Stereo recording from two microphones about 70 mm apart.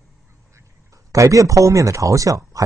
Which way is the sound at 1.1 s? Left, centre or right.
Right.